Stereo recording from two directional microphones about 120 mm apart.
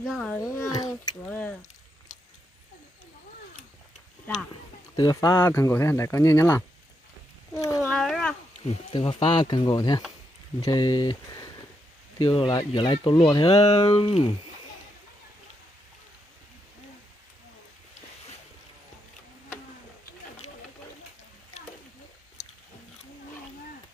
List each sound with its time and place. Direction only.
0.0 s a child's voice: 5° left (ahead or behind)
0.4 s a sound: 30° left (ahead or behind)
1.2 s a sound: 10° left (ahead or behind)
4.9 s speech: 35° left (ahead or behind)
7.9 s cat: 5° left (ahead or behind)
8.6 s speech: 50° left (ahead or behind)
13.5 s speech: 30° left (ahead or behind)
13.9 s speech: 45° left (ahead or behind)